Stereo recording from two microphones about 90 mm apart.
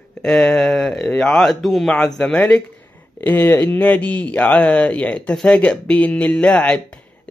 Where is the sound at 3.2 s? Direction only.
20° left (ahead or behind).